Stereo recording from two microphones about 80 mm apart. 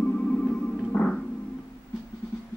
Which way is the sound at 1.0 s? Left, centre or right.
Centre.